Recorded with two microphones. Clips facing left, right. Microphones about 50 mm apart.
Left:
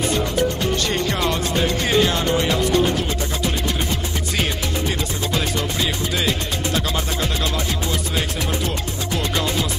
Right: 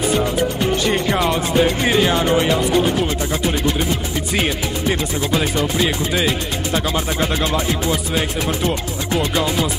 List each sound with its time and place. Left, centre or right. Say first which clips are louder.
0.1 s speech: right 2 dB; centre
5.3 s speech: right 5 dB; centre